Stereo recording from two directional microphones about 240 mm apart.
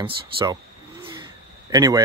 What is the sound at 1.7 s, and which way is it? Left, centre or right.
Speech, centre.